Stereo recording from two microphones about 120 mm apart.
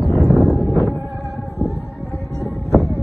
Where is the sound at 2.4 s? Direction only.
Centre (ahead or behind).